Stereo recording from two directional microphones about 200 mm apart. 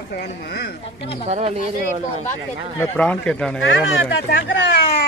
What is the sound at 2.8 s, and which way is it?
Speech, 10° left (ahead or behind).